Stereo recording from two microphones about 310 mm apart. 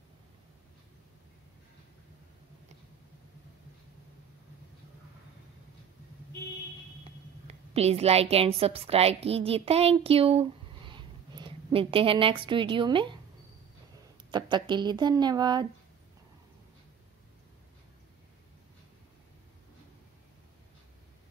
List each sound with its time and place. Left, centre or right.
7.4 s a woman's voice: centre
14.3 s speech: centre